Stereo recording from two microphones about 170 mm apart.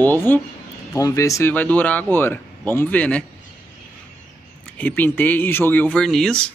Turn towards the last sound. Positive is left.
turn(degrees=5)  # may be behind; listen again after turning